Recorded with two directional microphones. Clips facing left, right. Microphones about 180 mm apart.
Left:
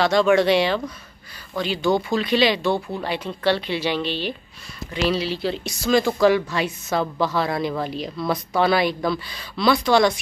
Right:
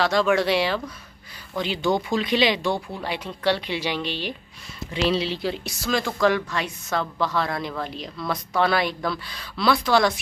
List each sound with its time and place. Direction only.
0.0 s speech: centre (ahead or behind)
1.6 s speech: 20° right (ahead or behind)
4.9 s speech: 25° right (ahead or behind); by 10.2 s centre (ahead or behind)